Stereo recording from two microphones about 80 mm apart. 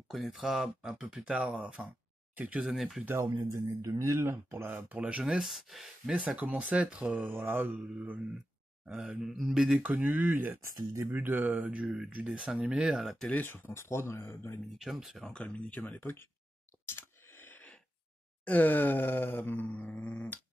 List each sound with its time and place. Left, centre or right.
0.1 s speech: centre
2.7 s speech: centre
3.5 s speech: right
4.0 s speech: right; by 6.1 s centre
6.1 s speech: centre
7.3 s speech: right
8.9 s speech: centre
9.8 s speech: right; by 13.3 s centre
13.3 s groan: left
14.8 s speech: centre
15.3 s groan: centre
16.9 s a sound: left
18.4 s groan: centre